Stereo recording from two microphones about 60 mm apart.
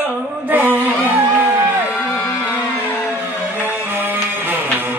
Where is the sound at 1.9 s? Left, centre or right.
Left.